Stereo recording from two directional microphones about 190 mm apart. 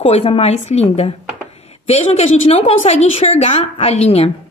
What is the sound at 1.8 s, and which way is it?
A woman's voice, 30° left (ahead or behind).